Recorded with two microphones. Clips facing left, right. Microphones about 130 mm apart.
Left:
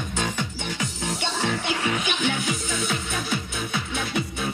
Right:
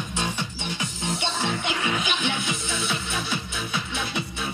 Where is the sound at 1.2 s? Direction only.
40° left (ahead or behind).